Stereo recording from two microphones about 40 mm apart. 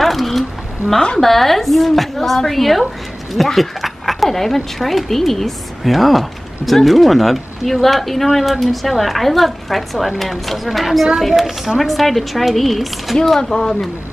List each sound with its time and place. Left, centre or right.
0.0 s a sound: centre
1.2 s speech: centre
13.4 s speech: centre